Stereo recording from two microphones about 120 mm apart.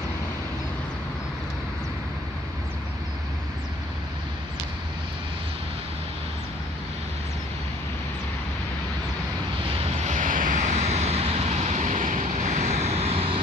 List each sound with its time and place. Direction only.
9.7 s vehicle: 60° right (ahead or behind)